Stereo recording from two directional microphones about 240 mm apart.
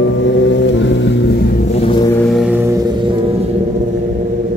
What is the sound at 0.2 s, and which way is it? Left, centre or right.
Vehicle, left.